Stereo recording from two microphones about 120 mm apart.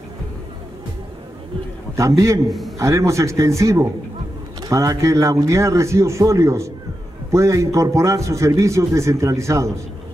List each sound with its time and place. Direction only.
2.0 s a man's voice: 25° right (ahead or behind)